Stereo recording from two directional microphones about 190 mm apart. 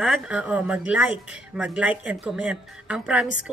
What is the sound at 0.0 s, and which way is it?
Speech, 5° right (ahead or behind).